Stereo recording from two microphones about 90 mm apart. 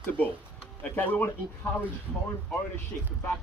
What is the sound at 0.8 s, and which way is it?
Speech, 20° left (ahead or behind).